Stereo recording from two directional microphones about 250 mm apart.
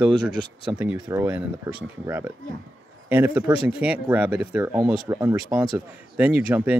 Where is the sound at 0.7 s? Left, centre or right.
Centre.